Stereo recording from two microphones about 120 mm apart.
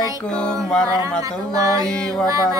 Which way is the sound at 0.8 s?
25° right (ahead or behind).